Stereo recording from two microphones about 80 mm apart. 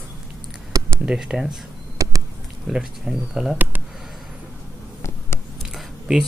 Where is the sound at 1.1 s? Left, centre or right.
Centre.